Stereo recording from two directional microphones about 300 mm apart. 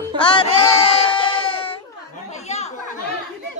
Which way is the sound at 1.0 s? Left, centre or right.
Centre.